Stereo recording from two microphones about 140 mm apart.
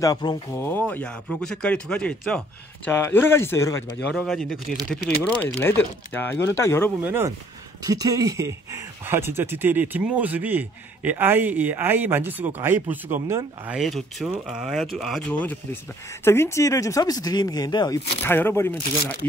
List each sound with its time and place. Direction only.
0.0 s speech: 30° left (ahead or behind)
0.6 s speech: 15° left (ahead or behind)
4.1 s speech: centre (ahead or behind)
5.4 s speech: 15° left (ahead or behind)
7.0 s speech: 15° right (ahead or behind)
7.8 s speech: 25° right (ahead or behind)
13.7 s speech: centre (ahead or behind)
15.3 s speech: 10° left (ahead or behind); by 18.0 s 30° left (ahead or behind)
18.2 s speech: 15° left (ahead or behind)